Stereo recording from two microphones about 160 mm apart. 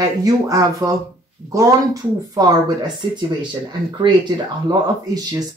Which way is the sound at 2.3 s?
25° right (ahead or behind).